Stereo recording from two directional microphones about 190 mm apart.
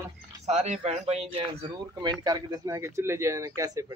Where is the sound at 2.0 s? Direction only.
20° right (ahead or behind).